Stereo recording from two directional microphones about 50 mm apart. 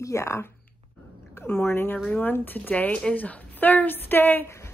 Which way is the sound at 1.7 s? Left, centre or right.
Left.